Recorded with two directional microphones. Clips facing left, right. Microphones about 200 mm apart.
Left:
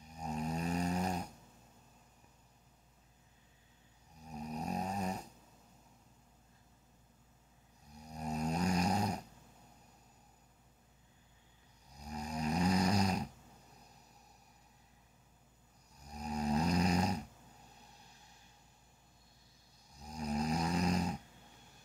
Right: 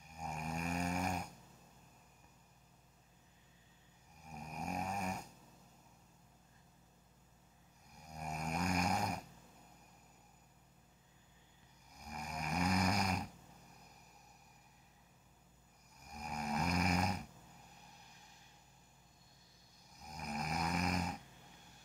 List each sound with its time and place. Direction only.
0.2 s snoring: 35° left (ahead or behind)
4.5 s snoring: 35° left (ahead or behind)
8.2 s snoring: 35° left (ahead or behind)
12.0 s snoring: 30° left (ahead or behind)
16.1 s snoring: 30° left (ahead or behind)
20.0 s snoring: 30° left (ahead or behind)